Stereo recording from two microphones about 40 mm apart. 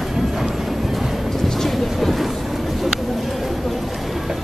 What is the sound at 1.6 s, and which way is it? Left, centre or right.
Train, centre.